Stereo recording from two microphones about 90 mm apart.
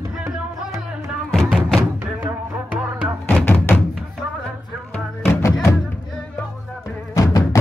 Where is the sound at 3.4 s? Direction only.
20° left (ahead or behind).